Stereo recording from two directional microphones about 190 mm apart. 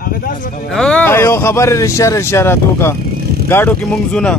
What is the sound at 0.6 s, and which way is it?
A man's voice, 5° left (ahead or behind).